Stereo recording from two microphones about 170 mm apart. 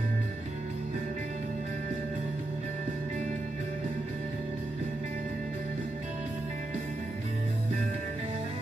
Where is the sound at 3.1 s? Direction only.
45° right (ahead or behind).